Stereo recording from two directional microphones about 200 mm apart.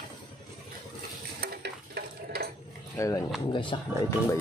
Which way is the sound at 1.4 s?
50° right (ahead or behind).